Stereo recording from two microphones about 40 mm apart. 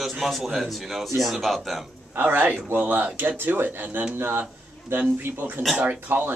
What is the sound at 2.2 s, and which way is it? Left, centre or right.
Speech, right.